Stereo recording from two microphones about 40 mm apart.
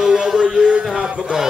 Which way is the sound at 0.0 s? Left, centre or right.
Centre.